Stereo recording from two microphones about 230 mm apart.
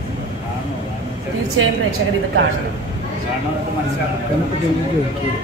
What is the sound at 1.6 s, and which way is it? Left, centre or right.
Speech, right.